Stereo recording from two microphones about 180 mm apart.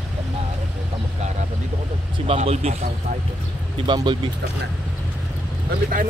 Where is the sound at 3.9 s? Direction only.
25° right (ahead or behind).